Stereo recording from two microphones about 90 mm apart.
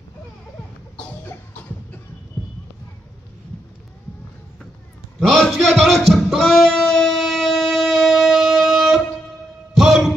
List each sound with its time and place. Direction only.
1.2 s music: 20° left (ahead or behind)
5.2 s music: centre (ahead or behind)
9.8 s a sound: centre (ahead or behind)